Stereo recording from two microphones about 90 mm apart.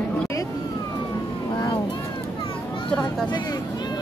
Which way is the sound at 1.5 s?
55° left (ahead or behind).